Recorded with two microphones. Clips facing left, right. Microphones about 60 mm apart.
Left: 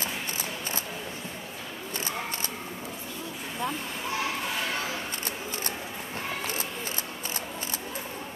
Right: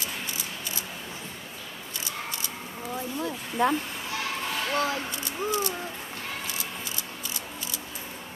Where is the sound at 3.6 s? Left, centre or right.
Right.